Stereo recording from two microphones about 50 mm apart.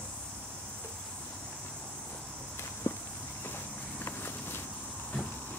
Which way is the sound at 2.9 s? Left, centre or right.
Left.